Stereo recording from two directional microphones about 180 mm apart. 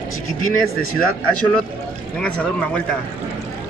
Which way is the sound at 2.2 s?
5° left (ahead or behind).